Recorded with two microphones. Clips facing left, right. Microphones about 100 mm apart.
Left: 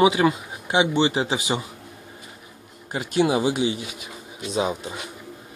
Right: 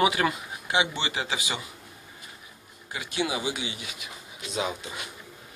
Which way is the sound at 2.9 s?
40° left (ahead or behind).